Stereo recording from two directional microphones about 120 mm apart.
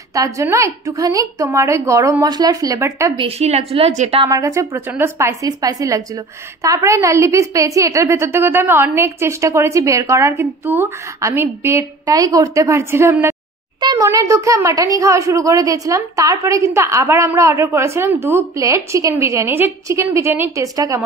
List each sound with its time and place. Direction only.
0.1 s a woman's voice: 30° right (ahead or behind)
3.2 s a woman's voice: 60° right (ahead or behind)
4.2 s a woman's voice: 30° right (ahead or behind)
4.7 s a woman's voice: 15° right (ahead or behind)
13.7 s a sound: 35° right (ahead or behind)
14.0 s a woman's voice: 25° right (ahead or behind)